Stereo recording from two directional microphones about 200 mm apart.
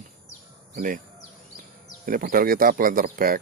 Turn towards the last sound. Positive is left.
turn(degrees=-45)  # may be behind; listen again after turning